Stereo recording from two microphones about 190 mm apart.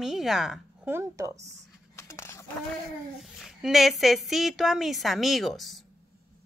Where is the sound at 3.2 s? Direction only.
Centre (ahead or behind).